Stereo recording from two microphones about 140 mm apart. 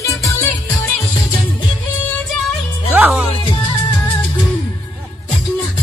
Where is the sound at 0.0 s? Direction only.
20° left (ahead or behind).